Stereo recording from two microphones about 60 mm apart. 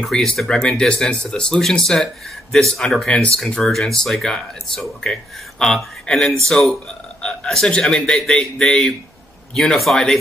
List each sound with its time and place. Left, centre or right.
0.0 s speech: centre